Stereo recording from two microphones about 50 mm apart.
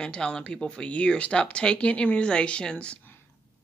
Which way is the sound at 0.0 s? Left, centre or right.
Centre.